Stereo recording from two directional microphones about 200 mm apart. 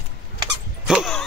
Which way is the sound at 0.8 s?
Centre (ahead or behind).